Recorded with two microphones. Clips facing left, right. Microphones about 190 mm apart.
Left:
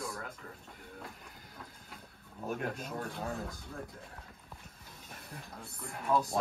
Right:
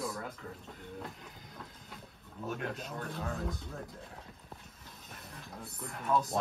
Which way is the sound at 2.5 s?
45° left (ahead or behind).